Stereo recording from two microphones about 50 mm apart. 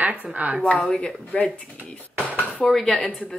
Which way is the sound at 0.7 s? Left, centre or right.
Centre.